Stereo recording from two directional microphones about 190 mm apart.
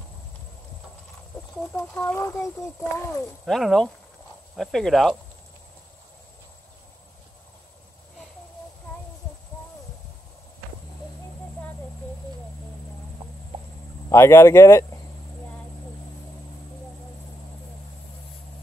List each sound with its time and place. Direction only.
1.7 s speech: 5° left (ahead or behind)
3.4 s speech: centre (ahead or behind)
14.0 s speech: 15° left (ahead or behind)